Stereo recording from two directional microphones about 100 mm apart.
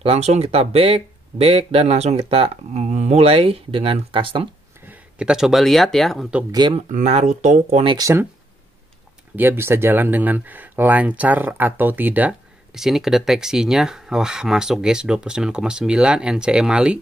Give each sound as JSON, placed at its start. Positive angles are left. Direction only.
{"t": 0.0, "sound": "speech", "side_deg": -85}
{"t": 4.8, "sound": "speech", "side_deg": -10}
{"t": 6.7, "sound": "speech", "side_deg": -90}
{"t": 8.0, "sound": "speech", "side_deg": -25}
{"t": 9.3, "sound": "speech", "side_deg": -20}
{"t": 12.7, "sound": "speech", "side_deg": -5}